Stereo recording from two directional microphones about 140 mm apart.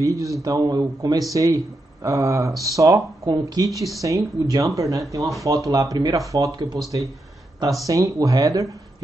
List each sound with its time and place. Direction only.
0.0 s speech: 25° right (ahead or behind)
7.8 s speech: 25° right (ahead or behind)